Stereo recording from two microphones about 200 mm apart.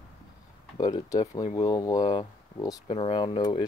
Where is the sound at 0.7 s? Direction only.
20° left (ahead or behind).